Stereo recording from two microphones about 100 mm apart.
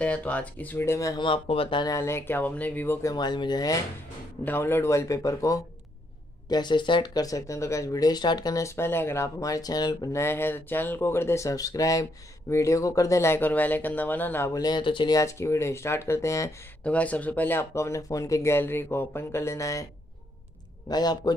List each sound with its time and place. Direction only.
0.0 s speech: 15° left (ahead or behind)
0.9 s speech: 35° left (ahead or behind)
1.2 s speech: 65° left (ahead or behind)
2.0 s speech: 25° left (ahead or behind)
3.2 s speech: 45° left (ahead or behind)
4.5 s speech: 20° left (ahead or behind)
6.5 s speech: 50° left (ahead or behind)
10.1 s speech: 25° left (ahead or behind)
14.5 s speech: 45° left (ahead or behind)
15.1 s speech: 30° left (ahead or behind)
16.8 s speech: 15° left (ahead or behind); by 19.9 s 30° left (ahead or behind)
20.9 s speech: 40° left (ahead or behind)